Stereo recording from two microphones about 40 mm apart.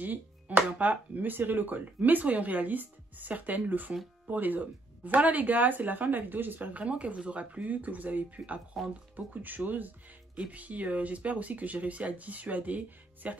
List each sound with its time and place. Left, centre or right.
0.0 s speech: right
6.7 s speech: right
8.8 s speech: centre
9.1 s speech: right